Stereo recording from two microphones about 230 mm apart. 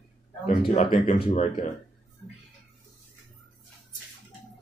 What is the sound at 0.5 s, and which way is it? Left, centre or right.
A man's voice, left.